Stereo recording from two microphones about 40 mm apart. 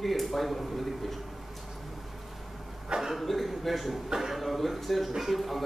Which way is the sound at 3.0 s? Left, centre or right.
Centre.